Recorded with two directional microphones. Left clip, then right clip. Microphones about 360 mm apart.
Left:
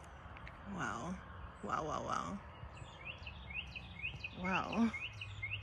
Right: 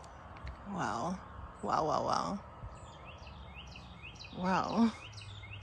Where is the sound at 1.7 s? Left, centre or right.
Centre.